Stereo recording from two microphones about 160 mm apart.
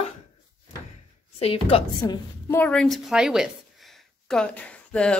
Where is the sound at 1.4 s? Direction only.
40° left (ahead or behind).